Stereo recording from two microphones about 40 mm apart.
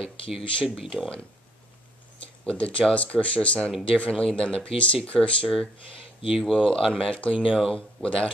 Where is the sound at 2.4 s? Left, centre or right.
Left.